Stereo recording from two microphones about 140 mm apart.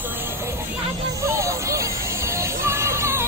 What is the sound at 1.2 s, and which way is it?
Music, 20° right (ahead or behind).